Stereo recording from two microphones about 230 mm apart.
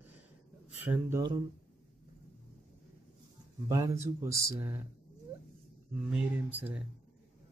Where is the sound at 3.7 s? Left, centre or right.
Centre.